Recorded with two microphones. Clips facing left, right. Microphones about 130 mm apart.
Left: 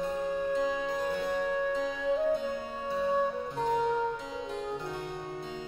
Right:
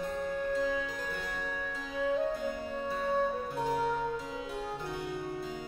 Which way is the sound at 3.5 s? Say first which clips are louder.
Left 3 dB; 5° right (ahead or behind).